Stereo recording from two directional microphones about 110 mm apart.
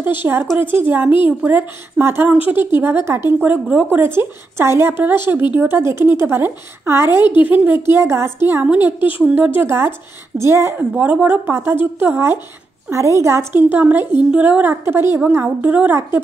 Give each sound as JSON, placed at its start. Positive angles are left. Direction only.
{"t": 0.2, "sound": "a woman's voice", "side_deg": -20}